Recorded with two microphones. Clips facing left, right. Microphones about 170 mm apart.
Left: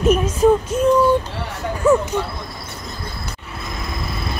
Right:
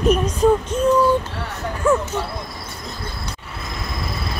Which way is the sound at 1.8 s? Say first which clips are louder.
Left 3 dB; 10° left (ahead or behind).